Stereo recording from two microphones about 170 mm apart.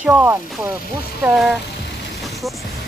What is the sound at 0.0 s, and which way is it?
Speech, 15° right (ahead or behind).